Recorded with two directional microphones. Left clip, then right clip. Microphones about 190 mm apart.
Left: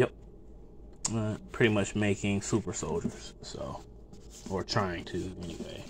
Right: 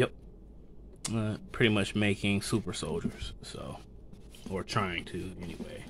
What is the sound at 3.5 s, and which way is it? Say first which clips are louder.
Speech: left 7 dB; 5° right (ahead or behind).